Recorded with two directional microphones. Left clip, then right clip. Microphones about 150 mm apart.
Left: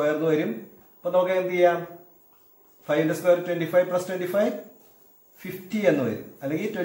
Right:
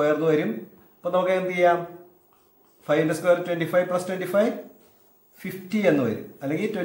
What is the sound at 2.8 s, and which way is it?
A man's voice, 25° right (ahead or behind).